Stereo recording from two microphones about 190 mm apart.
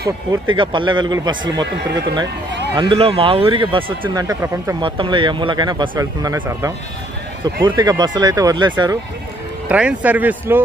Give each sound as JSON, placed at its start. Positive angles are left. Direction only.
{"t": 0.6, "sound": "speech", "side_deg": -25}
{"t": 4.7, "sound": "speech", "side_deg": -25}
{"t": 9.7, "sound": "speech", "side_deg": -5}